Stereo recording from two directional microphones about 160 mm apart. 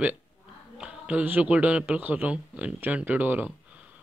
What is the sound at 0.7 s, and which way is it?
Speech, 5° right (ahead or behind).